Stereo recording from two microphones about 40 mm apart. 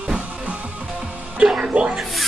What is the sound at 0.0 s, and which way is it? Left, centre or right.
Music, right.